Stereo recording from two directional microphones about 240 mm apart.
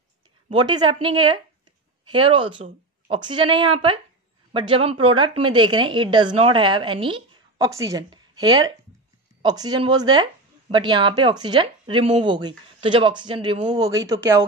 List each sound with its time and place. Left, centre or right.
0.5 s a woman's voice: centre